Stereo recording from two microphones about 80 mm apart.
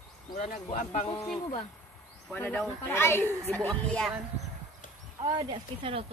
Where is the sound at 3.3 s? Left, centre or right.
Right.